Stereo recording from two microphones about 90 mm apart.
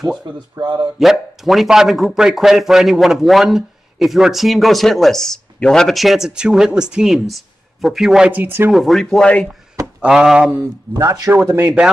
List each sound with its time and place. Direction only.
0.6 s speech: 50° right (ahead or behind)
0.9 s a man's voice: centre (ahead or behind)
8.3 s speech: 20° right (ahead or behind)
8.7 s a man's voice: centre (ahead or behind)
9.9 s speech: 5° right (ahead or behind)
10.6 s speech: 35° right (ahead or behind)
11.5 s speech: 25° right (ahead or behind)